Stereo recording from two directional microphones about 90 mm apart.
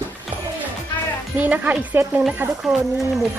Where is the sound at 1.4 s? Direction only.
15° right (ahead or behind).